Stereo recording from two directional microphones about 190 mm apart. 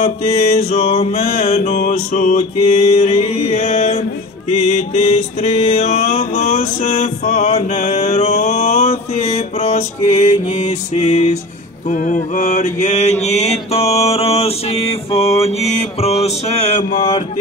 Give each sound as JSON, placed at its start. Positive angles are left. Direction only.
{"t": 0.0, "sound": "music", "side_deg": 35}
{"t": 15.4, "sound": "mantra", "side_deg": 35}